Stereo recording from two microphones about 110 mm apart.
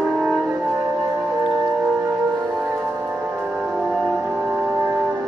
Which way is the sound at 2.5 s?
15° right (ahead or behind).